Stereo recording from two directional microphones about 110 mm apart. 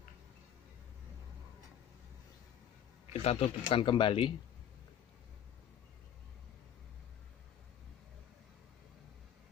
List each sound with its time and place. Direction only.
3.1 s speech: 70° left (ahead or behind); by 4.3 s 50° left (ahead or behind)